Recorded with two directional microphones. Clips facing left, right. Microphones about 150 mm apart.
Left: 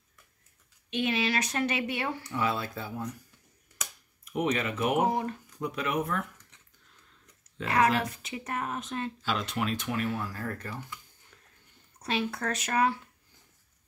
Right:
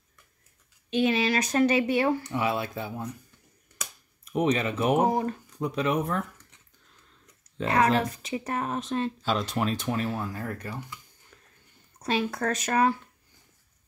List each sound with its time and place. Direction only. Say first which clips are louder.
0.8 s speech: right 5 dB; 35° right (ahead or behind)
2.2 s speech: right 3 dB; 20° right (ahead or behind)
4.2 s speech: right 4 dB; 35° right (ahead or behind)
7.5 s speech: right 3 dB; 30° right (ahead or behind)
10.3 s speech: right 2 dB; 15° right (ahead or behind)
12.0 s speech: right 4 dB; 40° right (ahead or behind)